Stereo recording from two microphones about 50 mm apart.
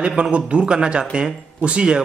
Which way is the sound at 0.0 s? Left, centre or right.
Centre.